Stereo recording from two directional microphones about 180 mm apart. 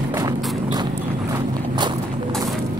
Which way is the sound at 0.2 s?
25° right (ahead or behind).